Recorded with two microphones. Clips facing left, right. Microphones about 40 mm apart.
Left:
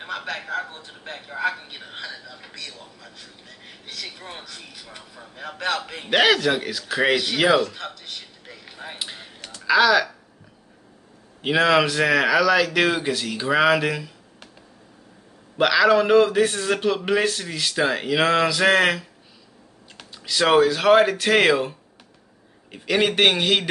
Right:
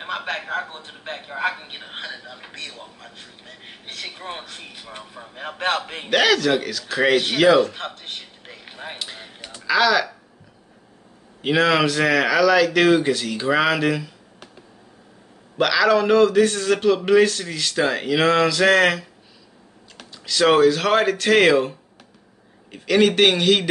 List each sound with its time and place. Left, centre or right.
0.0 s a sound: right
0.5 s a man's voice: right
6.0 s a man's voice: centre
7.6 s a sound: right
8.9 s a sound: centre
9.2 s quack: centre
9.7 s a man's voice: centre
11.4 s a man's voice: centre
15.5 s a man's voice: centre